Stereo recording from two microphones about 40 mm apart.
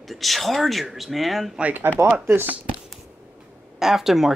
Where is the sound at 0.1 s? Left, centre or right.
Centre.